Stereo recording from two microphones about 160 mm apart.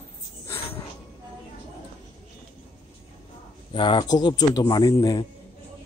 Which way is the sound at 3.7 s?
30° left (ahead or behind).